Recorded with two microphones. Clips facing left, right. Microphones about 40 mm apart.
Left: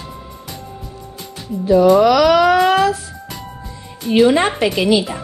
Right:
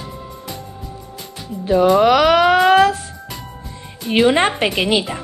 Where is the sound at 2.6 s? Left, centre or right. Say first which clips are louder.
Right 2 dB; right.